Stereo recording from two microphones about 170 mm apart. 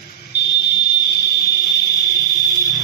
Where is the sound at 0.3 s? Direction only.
80° left.